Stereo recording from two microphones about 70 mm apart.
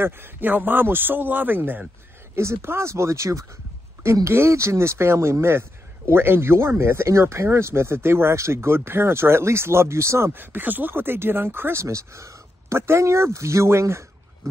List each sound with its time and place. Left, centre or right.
0.0 s a man's voice: right
2.3 s speech: right
10.3 s speech: right